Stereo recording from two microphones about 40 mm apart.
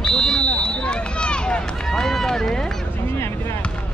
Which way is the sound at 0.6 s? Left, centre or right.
Left.